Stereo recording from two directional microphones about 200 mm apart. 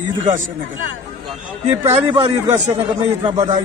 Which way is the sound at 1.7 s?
30° right (ahead or behind).